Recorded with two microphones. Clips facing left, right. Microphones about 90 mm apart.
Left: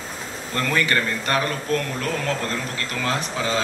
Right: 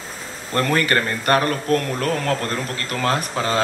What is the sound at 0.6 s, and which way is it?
A man's voice, 45° right (ahead or behind).